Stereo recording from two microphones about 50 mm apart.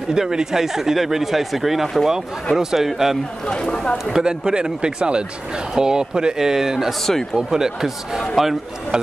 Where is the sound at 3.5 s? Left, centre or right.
Centre.